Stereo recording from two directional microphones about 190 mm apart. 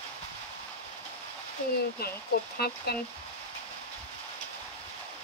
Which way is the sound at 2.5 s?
55° left (ahead or behind).